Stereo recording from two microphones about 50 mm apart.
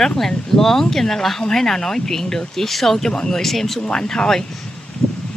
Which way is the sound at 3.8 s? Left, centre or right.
Centre.